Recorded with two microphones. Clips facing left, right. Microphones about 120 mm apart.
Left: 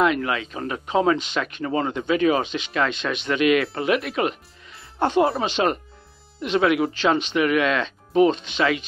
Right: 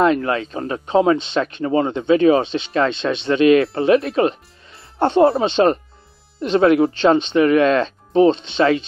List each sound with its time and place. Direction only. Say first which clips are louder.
0.0 s speech: right 4 dB; 35° right (ahead or behind)